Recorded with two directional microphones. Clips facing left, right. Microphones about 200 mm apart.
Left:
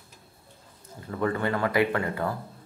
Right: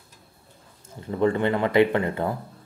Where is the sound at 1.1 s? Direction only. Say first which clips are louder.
Right 5 dB; 25° right (ahead or behind).